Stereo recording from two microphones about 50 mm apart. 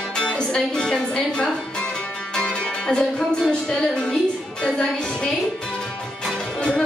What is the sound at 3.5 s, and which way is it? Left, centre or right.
Music, centre.